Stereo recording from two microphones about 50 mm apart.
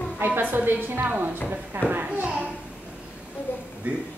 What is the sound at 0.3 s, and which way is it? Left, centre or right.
Speech, right.